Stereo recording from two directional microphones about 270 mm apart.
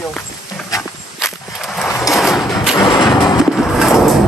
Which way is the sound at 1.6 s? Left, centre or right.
Centre.